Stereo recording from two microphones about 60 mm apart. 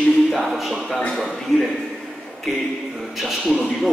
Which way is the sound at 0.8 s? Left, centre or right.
Centre.